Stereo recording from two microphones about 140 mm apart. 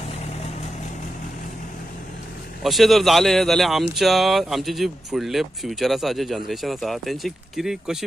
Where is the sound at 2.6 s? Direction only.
Centre (ahead or behind).